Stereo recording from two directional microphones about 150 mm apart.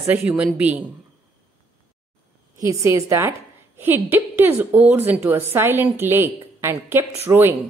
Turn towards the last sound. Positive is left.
turn(degrees=-15)  # may be behind; listen again after turning